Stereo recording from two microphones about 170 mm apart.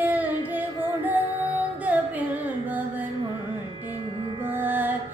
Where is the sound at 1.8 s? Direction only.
10° right (ahead or behind).